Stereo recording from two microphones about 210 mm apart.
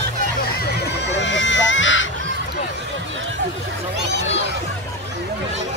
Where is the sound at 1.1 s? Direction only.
60° left (ahead or behind).